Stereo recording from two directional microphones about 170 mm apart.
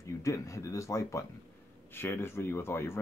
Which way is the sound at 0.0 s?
20° left (ahead or behind).